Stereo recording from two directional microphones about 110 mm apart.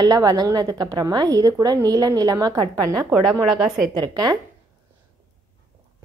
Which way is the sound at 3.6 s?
5° right (ahead or behind).